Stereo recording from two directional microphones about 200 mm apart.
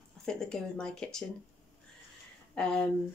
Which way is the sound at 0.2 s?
5° left (ahead or behind).